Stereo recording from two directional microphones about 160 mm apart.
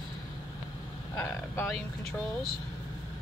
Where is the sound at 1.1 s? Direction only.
15° left (ahead or behind).